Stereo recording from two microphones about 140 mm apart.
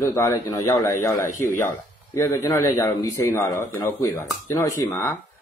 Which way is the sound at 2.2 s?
25° left (ahead or behind).